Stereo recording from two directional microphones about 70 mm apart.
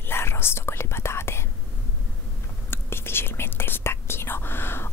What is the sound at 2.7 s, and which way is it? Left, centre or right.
Whispering, left.